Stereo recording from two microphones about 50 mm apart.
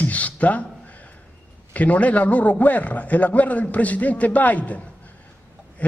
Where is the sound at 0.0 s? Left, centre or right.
Left.